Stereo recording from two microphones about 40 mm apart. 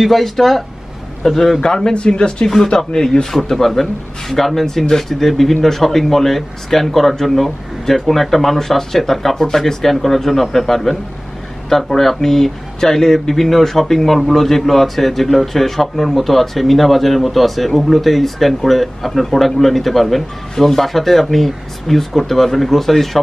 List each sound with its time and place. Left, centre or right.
0.0 s speech: centre
1.6 s a man's voice: centre